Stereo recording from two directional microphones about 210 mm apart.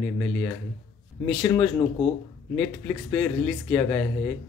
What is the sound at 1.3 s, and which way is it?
Speech, 5° left (ahead or behind).